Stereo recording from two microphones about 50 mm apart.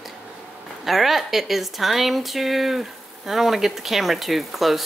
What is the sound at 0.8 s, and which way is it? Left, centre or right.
Speech, centre.